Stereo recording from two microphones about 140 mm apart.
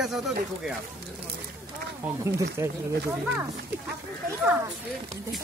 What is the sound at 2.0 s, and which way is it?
Speech, 20° right (ahead or behind).